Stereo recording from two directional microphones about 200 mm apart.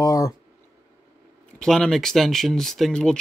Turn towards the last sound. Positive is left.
turn(degrees=5)  # may be behind; listen again after turning